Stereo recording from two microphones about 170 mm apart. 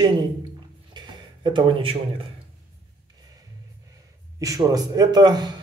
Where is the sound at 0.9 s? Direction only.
25° right (ahead or behind).